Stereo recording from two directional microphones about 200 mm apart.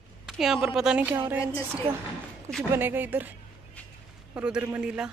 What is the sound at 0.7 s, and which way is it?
Speech, 5° right (ahead or behind).